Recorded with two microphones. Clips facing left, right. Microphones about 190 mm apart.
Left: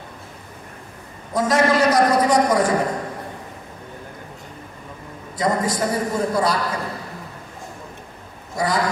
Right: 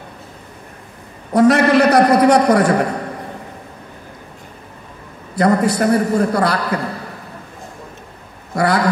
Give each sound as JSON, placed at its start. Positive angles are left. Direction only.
{"t": 1.3, "sound": "a man's voice", "side_deg": -65}
{"t": 5.3, "sound": "a man's voice", "side_deg": -65}
{"t": 8.5, "sound": "a man's voice", "side_deg": -65}